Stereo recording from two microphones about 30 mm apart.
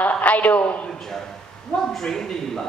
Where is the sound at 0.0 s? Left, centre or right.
Left.